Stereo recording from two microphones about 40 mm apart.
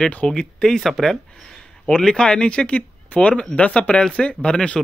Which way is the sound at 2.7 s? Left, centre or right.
Left.